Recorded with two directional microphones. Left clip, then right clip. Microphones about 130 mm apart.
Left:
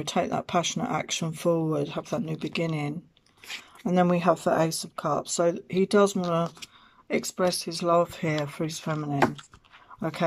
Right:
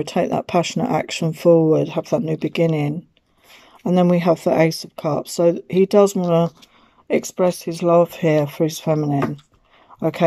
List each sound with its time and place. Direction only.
0.1 s speech: 25° right (ahead or behind)
4.3 s speech: 15° right (ahead or behind)
5.3 s speech: 30° right (ahead or behind)